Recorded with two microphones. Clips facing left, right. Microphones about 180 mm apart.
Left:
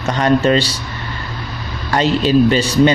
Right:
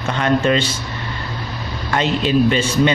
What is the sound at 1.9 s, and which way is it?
A man's voice, 35° left (ahead or behind).